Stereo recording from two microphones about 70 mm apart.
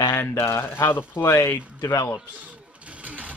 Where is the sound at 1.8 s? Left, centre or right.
Left.